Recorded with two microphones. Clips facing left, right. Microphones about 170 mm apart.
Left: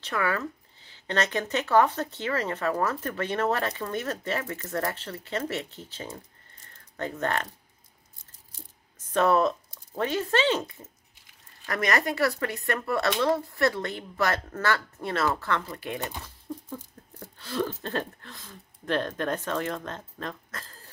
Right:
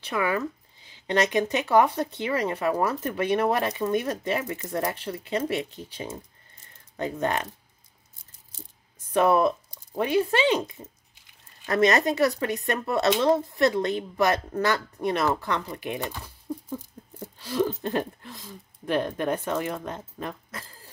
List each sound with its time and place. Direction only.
0.0 s speech: 15° right (ahead or behind)
9.0 s speech: 10° right (ahead or behind)
11.6 s speech: 25° right (ahead or behind)